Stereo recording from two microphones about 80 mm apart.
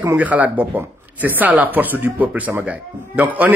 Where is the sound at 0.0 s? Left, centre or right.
Right.